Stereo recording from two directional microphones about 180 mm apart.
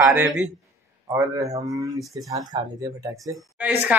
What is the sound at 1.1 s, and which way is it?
Speech, 20° right (ahead or behind).